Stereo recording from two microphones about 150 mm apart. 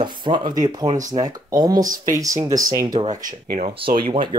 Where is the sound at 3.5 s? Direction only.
75° right (ahead or behind).